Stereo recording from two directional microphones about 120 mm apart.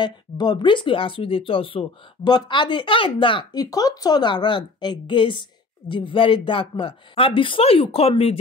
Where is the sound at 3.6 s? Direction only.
30° left (ahead or behind).